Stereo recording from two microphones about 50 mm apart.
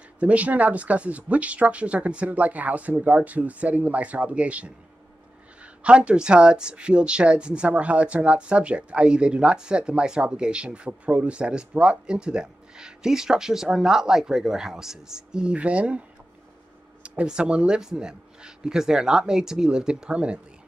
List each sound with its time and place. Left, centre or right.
0.2 s speech: right
15.5 s speech: right
17.0 s speech: right